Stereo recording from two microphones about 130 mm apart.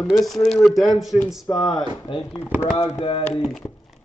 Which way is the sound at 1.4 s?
30° left (ahead or behind).